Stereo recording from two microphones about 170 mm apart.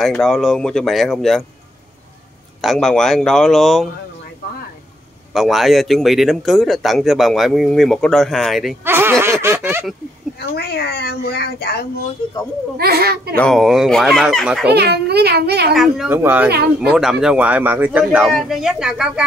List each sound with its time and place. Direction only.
0.0 s speech: centre (ahead or behind)
2.6 s speech: centre (ahead or behind)
5.3 s speech: centre (ahead or behind)
8.8 s snicker: 15° right (ahead or behind)
9.2 s a sound: 15° right (ahead or behind)
10.4 s speech: 70° left (ahead or behind)
12.7 s a child's voice: 65° right (ahead or behind)
13.4 s speech: centre (ahead or behind)
14.7 s a child's voice: 75° right (ahead or behind)
15.7 s speech: centre (ahead or behind)
16.2 s a sound: 10° right (ahead or behind)
16.4 s a child's voice: 70° right (ahead or behind)
16.9 s speech: 5° right (ahead or behind)